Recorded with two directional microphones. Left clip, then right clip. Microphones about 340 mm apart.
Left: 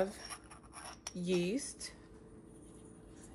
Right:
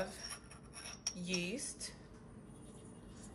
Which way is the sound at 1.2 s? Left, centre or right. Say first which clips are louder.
Left 7 dB; centre.